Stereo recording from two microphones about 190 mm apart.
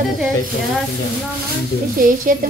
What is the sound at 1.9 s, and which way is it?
Speech, 45° right (ahead or behind).